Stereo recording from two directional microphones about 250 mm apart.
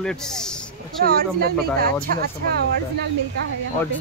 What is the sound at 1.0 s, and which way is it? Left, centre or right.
Speech, right.